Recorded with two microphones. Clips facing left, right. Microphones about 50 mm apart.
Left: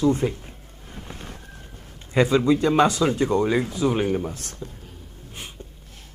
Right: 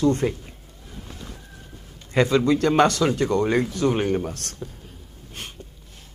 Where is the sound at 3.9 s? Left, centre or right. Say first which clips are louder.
Even; centre.